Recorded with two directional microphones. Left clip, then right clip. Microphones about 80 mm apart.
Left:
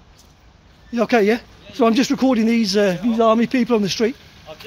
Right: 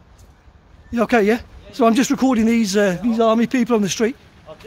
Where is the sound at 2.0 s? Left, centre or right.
Right.